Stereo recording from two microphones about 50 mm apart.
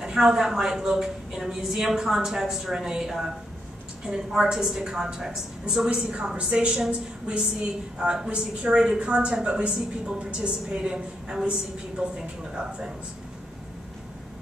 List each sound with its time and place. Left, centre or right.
0.0 s a woman's voice: centre
12.5 s a woman's voice: centre